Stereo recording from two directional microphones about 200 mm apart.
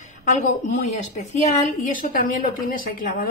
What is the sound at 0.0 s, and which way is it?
Speech, 40° left (ahead or behind).